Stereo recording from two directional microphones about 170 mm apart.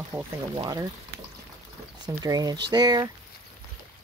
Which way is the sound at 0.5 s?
20° right (ahead or behind).